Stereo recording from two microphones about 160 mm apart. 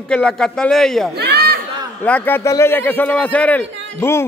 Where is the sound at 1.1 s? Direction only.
90° right.